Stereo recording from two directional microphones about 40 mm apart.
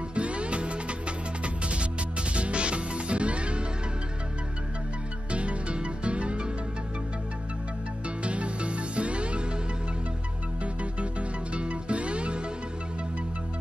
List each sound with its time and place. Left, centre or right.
0.1 s music: right
5.3 s music: right
8.2 s music: right
10.6 s music: right